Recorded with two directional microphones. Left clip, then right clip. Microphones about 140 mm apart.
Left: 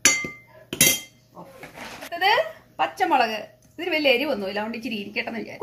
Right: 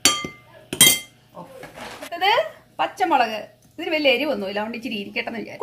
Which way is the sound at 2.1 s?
20° right (ahead or behind).